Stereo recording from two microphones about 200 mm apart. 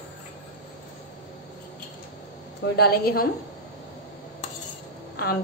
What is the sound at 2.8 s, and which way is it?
Speech, 50° left (ahead or behind).